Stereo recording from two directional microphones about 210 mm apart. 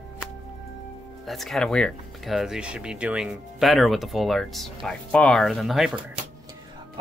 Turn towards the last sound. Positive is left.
turn(degrees=0)  # may be behind; listen again after turning